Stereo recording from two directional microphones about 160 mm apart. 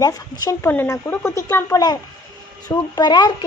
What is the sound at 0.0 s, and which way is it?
A woman's voice, 20° left (ahead or behind).